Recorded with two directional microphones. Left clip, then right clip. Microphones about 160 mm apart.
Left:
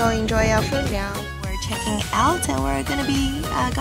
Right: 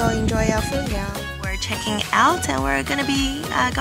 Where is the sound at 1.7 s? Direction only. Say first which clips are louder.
Right 3 dB; centre (ahead or behind).